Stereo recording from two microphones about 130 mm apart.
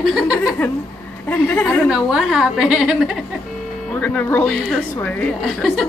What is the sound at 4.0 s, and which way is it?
Speech, 15° left (ahead or behind).